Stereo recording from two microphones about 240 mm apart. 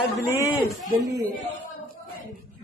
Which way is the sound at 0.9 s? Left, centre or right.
Centre.